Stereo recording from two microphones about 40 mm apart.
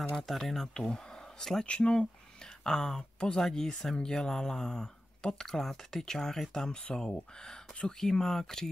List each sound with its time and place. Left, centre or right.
0.1 s speech: centre